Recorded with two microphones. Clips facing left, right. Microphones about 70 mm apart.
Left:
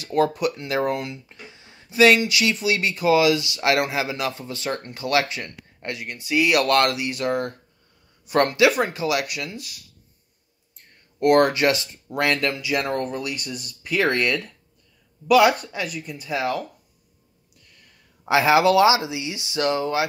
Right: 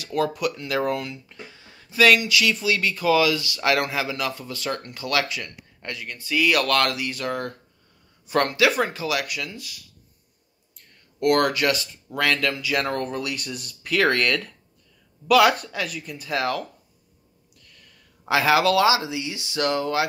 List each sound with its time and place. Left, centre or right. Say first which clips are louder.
0.0 s speech: left 3 dB; left
10.8 s speech: left 2 dB; left
12.5 s speech: left 1 dB; centre
18.3 s speech: left 2 dB; centre